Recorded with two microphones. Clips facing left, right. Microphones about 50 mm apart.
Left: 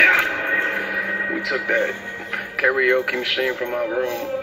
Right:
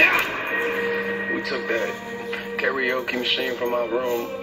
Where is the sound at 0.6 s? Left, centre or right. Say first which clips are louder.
Left 2 dB; left.